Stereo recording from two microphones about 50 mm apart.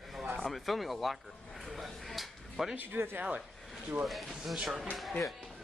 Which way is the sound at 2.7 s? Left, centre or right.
Right.